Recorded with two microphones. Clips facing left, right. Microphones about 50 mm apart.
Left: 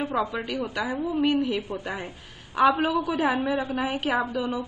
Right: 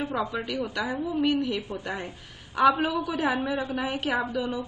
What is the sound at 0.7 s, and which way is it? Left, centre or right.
A woman's voice, centre.